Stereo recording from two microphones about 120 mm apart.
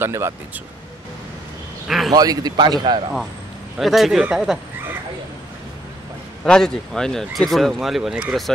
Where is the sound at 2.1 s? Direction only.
35° right (ahead or behind).